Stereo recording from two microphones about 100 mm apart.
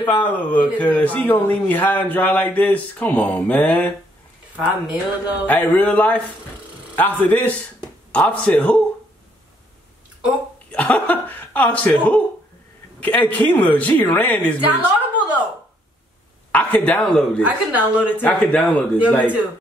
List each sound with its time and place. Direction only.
0.0 s speech: 15° left (ahead or behind)
4.6 s speech: 15° right (ahead or behind)
5.5 s a man's voice: 15° left (ahead or behind)
10.7 s a sound: 15° left (ahead or behind)
13.0 s speech: 15° left (ahead or behind)
14.7 s chuckle: 15° right (ahead or behind)
16.5 s speech: 10° left (ahead or behind)